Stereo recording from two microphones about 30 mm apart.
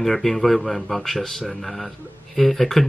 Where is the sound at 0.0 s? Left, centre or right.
Centre.